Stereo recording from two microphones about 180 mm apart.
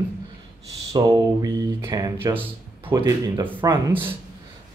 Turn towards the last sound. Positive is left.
turn(degrees=-25)  # may be behind; listen again after turning